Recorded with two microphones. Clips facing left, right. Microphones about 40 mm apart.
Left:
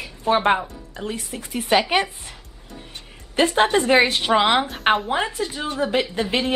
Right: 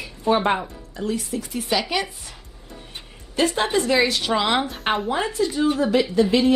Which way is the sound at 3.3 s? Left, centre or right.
Left.